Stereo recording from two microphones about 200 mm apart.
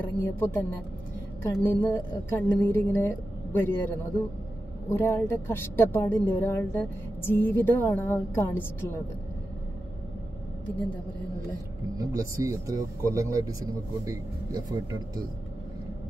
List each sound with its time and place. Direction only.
0.2 s a woman's voice: 10° left (ahead or behind)
10.8 s a woman's voice: 5° left (ahead or behind)
12.0 s speech: 20° right (ahead or behind)